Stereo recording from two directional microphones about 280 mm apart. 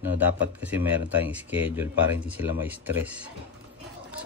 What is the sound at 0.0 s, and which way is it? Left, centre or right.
Speech, centre.